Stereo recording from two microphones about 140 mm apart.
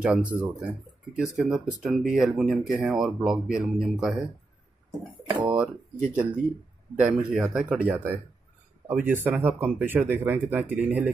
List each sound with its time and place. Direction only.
0.0 s speech: 10° right (ahead or behind)
5.3 s speech: 10° right (ahead or behind)